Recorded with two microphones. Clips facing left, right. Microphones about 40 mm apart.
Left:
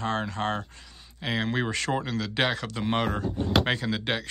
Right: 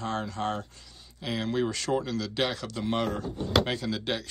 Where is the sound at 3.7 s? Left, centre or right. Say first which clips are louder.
Left 3 dB; left.